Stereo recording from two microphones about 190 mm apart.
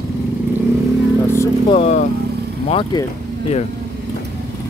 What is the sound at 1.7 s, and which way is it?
Speech, 35° left (ahead or behind).